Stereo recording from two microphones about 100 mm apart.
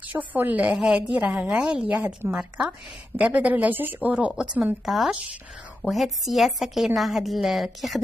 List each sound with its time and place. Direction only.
0.0 s speech: 15° right (ahead or behind)
4.8 s a woman's voice: centre (ahead or behind)